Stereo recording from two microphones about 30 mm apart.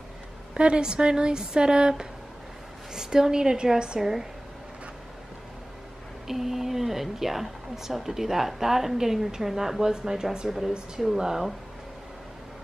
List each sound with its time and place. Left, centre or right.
0.6 s a woman's voice: right
4.0 s speech: centre
6.2 s a woman's voice: centre